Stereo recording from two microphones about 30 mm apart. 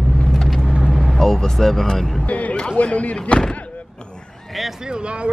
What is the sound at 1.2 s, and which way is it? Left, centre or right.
Speech, centre.